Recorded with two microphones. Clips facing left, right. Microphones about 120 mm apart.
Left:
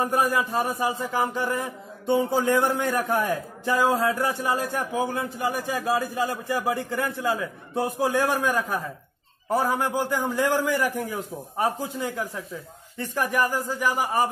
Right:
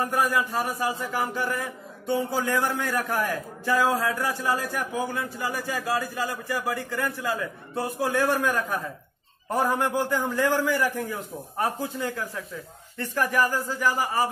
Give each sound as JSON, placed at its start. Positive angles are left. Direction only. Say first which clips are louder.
{"t": 0.2, "sound": "a man's voice", "louder": "left 1 dB", "side_deg": 20}